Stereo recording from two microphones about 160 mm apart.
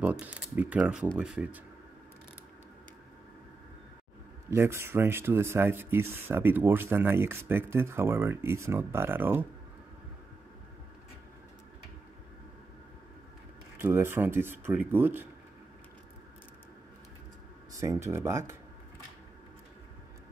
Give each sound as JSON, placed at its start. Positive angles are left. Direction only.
{"t": 0.0, "sound": "speech", "side_deg": -10}
{"t": 4.5, "sound": "speech", "side_deg": -15}
{"t": 13.7, "sound": "speech", "side_deg": -15}
{"t": 17.7, "sound": "speech", "side_deg": -20}